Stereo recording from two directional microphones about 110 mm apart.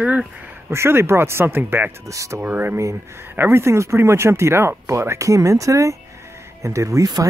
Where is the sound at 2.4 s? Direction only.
15° right (ahead or behind).